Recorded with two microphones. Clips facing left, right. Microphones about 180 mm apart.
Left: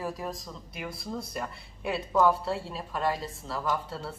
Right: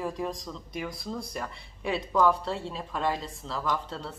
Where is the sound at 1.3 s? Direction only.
5° left (ahead or behind).